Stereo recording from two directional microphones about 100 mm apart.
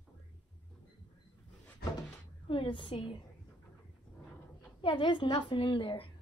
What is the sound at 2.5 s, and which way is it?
Speech, 55° left (ahead or behind).